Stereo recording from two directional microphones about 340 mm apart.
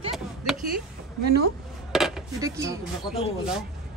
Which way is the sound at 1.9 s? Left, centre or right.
Centre.